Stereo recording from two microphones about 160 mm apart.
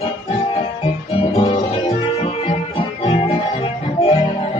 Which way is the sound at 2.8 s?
35° left (ahead or behind).